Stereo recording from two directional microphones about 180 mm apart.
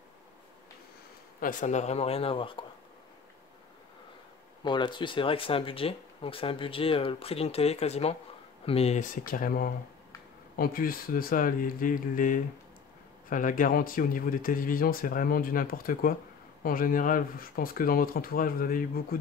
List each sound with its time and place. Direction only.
1.4 s speech: 45° left (ahead or behind)
4.6 s speech: 25° left (ahead or behind); by 19.1 s 55° left (ahead or behind)